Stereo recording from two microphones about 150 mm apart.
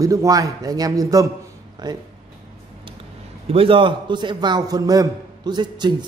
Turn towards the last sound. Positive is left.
turn(degrees=-30)  # may be behind; listen again after turning